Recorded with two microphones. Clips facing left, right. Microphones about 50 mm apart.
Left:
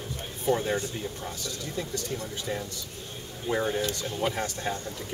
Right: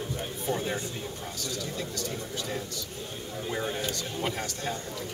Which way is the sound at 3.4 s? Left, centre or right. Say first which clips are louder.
Left 5 dB; centre.